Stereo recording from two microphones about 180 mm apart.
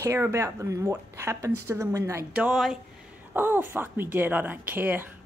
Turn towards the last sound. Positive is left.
turn(degrees=-10)  # may be behind; listen again after turning